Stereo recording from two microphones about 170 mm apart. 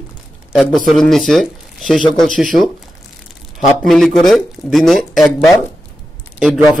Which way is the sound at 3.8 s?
Centre (ahead or behind).